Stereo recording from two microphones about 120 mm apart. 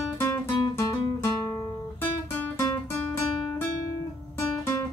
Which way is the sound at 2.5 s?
25° left (ahead or behind).